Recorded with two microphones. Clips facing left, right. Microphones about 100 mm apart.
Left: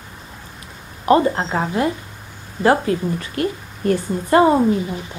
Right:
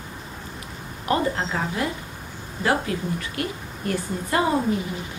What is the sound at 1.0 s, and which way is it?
A woman's voice, 35° left (ahead or behind).